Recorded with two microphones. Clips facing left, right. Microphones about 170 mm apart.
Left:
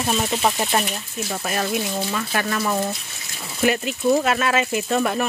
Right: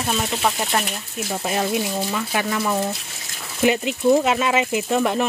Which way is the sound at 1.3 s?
15° right (ahead or behind).